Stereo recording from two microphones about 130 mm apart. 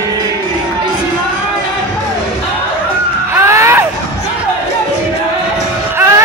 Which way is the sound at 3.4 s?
20° right (ahead or behind).